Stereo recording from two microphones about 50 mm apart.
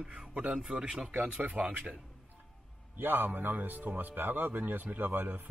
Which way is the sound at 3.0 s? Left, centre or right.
Right.